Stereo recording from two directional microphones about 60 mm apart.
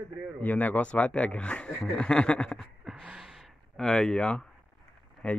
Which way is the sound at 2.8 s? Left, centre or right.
Centre.